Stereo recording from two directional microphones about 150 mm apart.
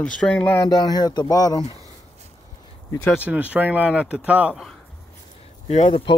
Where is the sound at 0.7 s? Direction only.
25° left (ahead or behind).